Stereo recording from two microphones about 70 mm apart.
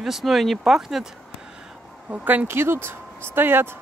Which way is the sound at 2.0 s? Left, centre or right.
Right.